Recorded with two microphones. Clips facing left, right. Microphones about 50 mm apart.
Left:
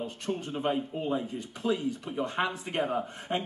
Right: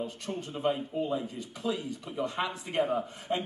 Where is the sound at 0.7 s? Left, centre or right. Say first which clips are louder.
Right 1 dB; left.